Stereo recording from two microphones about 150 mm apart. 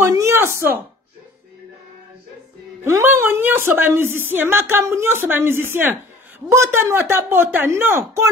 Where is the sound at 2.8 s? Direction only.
15° right (ahead or behind).